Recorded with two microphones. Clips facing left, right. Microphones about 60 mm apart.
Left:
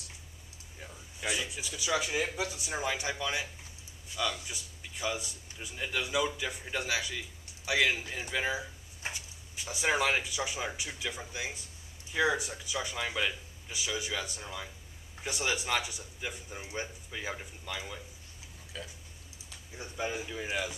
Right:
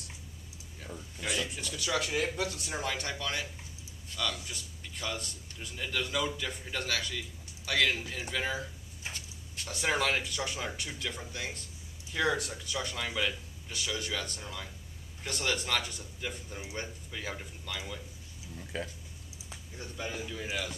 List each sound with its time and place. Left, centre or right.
1.2 s a man's voice: centre
18.7 s speech: right
19.8 s a man's voice: centre